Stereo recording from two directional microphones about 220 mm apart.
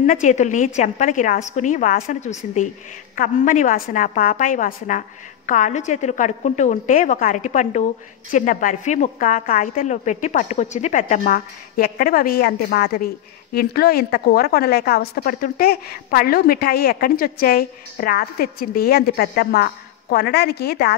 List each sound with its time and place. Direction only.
0.0 s a woman's voice: 35° left (ahead or behind)